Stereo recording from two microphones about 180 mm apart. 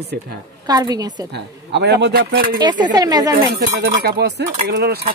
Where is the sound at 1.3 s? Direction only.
70° right (ahead or behind); by 2.6 s 55° right (ahead or behind).